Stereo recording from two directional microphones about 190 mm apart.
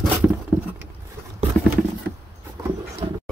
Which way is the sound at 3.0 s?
25° right (ahead or behind).